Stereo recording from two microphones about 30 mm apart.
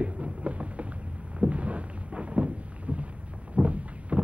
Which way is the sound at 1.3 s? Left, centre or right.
Right.